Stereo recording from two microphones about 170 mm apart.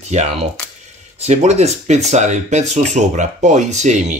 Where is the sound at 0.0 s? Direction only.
40° right (ahead or behind).